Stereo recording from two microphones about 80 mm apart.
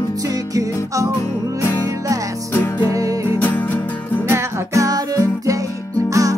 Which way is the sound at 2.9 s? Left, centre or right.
Right.